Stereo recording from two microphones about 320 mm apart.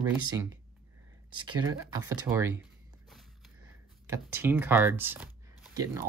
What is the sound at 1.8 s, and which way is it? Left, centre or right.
Speech, centre.